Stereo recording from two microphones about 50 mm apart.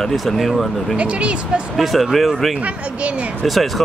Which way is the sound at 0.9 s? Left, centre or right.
Right.